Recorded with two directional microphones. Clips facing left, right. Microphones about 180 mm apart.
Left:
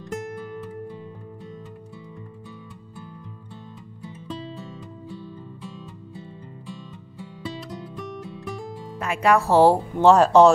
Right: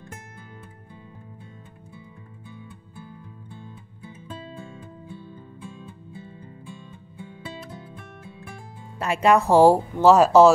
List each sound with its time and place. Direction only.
9.0 s speech: 25° right (ahead or behind); by 10.5 s 5° right (ahead or behind)